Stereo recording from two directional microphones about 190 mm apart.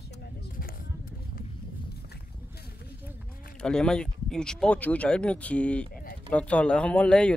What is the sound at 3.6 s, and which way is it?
Speech, 5° left (ahead or behind).